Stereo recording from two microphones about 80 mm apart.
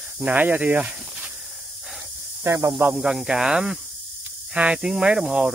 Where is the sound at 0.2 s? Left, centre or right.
Right.